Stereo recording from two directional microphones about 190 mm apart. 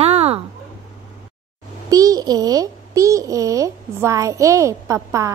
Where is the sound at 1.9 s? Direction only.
20° right (ahead or behind).